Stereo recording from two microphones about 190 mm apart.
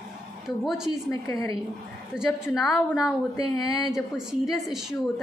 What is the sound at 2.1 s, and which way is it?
A woman's voice, centre (ahead or behind).